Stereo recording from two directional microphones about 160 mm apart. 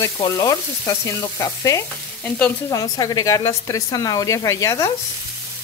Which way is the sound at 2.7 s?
20° left (ahead or behind).